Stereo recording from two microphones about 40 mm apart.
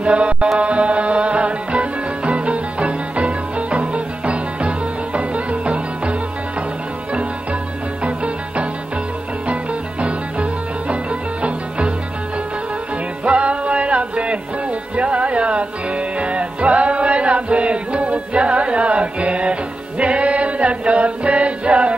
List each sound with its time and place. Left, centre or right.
0.0 s mantra: right
0.6 s music: right
8.0 s music: right
13.2 s music: right